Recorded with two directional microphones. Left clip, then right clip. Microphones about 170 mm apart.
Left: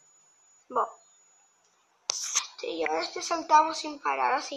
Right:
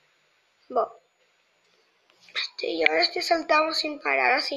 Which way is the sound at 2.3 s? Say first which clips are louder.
Right 3 dB; 5° right (ahead or behind).